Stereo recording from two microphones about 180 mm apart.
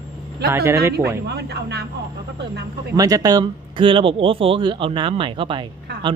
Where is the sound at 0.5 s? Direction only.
15° right (ahead or behind).